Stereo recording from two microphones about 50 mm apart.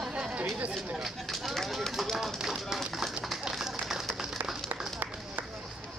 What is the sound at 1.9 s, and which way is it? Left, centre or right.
Run, centre.